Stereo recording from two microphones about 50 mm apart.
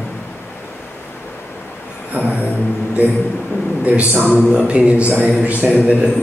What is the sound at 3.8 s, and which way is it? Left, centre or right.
A man's voice, right.